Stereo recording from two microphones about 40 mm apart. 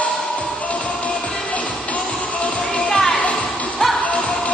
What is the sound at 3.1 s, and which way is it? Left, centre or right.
Music, left.